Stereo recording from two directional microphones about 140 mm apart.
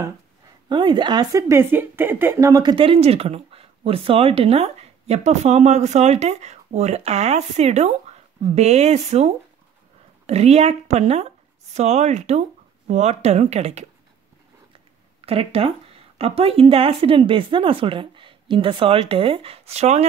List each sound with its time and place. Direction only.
0.7 s speech: 35° right (ahead or behind)
1.5 s speech: 15° right (ahead or behind)
2.6 s a woman's voice: 40° right (ahead or behind)
15.2 s speech: 45° right (ahead or behind)